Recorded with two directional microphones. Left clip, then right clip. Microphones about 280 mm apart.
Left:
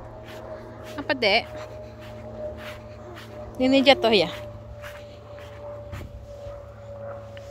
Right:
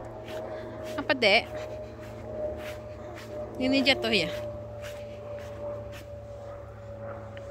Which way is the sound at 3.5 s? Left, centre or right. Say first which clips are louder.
Left 7 dB; centre.